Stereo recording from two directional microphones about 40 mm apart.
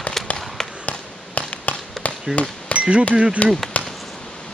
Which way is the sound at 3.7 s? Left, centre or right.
Left.